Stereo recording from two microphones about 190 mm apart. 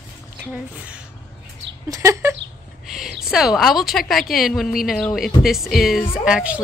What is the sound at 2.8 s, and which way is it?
A woman's voice, centre (ahead or behind).